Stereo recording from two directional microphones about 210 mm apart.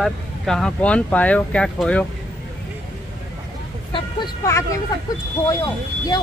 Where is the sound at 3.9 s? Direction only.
15° left (ahead or behind).